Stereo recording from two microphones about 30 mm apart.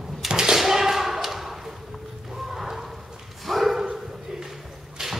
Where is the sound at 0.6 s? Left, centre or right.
Centre.